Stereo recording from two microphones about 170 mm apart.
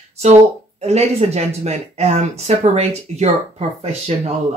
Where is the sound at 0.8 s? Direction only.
40° right (ahead or behind).